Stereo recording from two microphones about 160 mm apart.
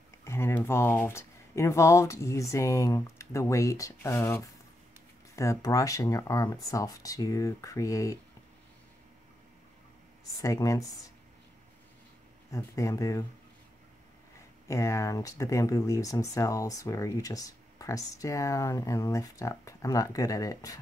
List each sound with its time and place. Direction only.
0.2 s speech: 15° left (ahead or behind)
10.4 s speech: 20° left (ahead or behind)
12.4 s speech: 20° left (ahead or behind)
14.7 s speech: 20° left (ahead or behind)